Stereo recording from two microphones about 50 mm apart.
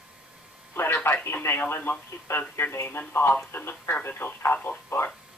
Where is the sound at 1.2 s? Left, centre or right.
Left.